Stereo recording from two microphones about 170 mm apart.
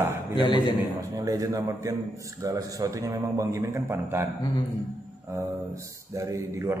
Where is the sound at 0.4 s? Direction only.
25° left (ahead or behind).